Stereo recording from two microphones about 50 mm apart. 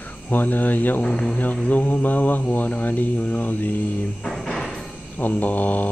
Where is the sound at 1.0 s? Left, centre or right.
Left.